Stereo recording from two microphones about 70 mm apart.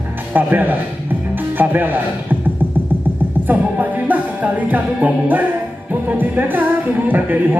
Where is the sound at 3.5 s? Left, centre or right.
Right.